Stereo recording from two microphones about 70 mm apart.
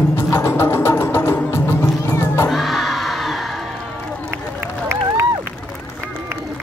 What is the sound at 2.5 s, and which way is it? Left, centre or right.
Crowd, centre.